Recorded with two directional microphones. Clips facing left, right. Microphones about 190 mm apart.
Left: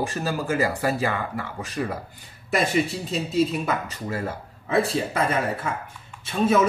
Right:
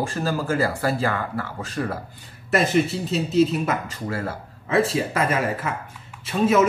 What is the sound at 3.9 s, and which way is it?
Speech, 15° left (ahead or behind).